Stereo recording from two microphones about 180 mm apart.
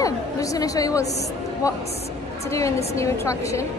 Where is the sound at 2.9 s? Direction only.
15° left (ahead or behind).